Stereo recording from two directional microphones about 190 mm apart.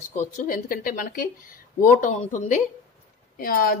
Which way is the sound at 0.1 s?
40° left (ahead or behind).